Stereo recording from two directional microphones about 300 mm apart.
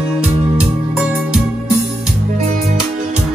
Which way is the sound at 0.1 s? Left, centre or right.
Centre.